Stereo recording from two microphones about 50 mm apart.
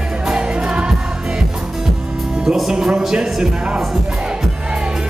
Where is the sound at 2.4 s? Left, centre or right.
Centre.